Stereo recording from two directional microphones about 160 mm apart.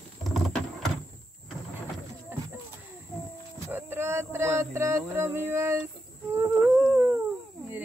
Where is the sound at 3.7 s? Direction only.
15° right (ahead or behind).